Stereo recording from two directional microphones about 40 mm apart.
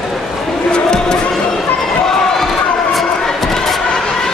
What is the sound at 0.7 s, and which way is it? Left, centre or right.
Speech, centre.